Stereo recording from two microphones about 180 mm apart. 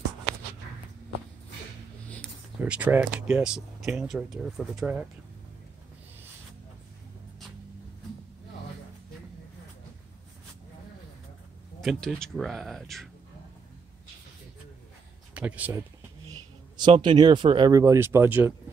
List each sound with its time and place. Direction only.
2.6 s speech: 10° right (ahead or behind)
11.8 s speech: centre (ahead or behind)
15.3 s speech: 10° right (ahead or behind)
16.7 s speech: 25° right (ahead or behind)